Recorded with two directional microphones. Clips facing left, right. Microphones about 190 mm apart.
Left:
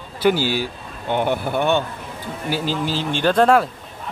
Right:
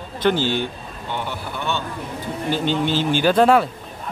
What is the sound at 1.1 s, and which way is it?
Speech, 55° left (ahead or behind).